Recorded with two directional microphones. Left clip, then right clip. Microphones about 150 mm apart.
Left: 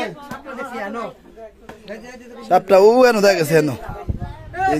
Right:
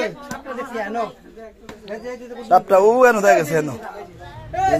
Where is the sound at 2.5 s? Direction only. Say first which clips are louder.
Left 1 dB; 65° left (ahead or behind).